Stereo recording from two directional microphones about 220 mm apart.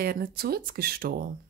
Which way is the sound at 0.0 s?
40° right (ahead or behind).